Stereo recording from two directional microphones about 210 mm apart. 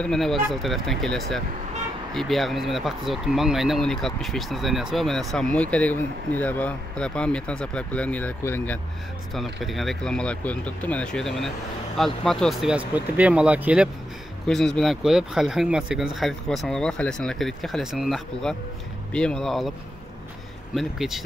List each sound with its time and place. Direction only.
0.0 s speech: centre (ahead or behind)
20.7 s speech: centre (ahead or behind)